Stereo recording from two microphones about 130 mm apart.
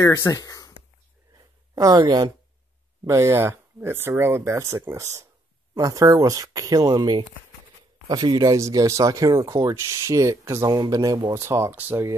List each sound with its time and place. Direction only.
0.0 s speech: 25° left (ahead or behind)
1.8 s speech: 30° right (ahead or behind)
3.1 s speech: 20° right (ahead or behind)